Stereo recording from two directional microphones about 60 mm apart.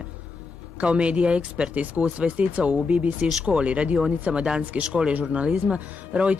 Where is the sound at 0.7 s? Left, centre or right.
Centre.